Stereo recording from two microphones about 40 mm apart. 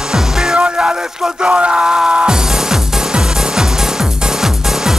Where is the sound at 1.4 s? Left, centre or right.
Right.